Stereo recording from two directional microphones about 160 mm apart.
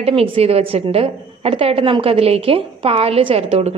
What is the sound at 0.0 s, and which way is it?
A woman's voice, 35° right (ahead or behind).